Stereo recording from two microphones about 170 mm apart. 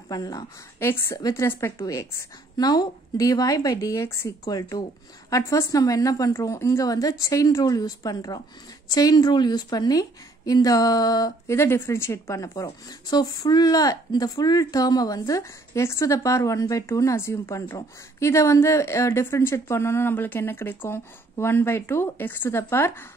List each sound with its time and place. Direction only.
0.1 s a woman's voice: 20° left (ahead or behind)